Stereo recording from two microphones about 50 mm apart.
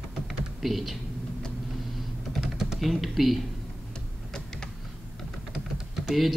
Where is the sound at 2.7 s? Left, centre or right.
Centre.